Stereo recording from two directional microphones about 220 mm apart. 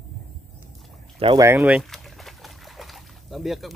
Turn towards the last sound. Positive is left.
turn(degrees=0)  # may be behind; listen again after turning